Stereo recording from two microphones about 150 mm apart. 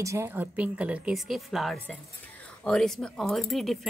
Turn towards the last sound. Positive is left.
turn(degrees=0)  # may be behind; listen again after turning